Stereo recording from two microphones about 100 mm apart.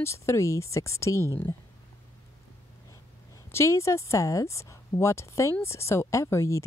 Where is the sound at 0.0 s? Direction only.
30° left (ahead or behind).